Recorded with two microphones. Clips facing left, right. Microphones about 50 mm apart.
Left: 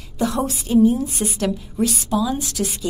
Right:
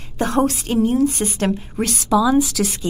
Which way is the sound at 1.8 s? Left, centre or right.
Right.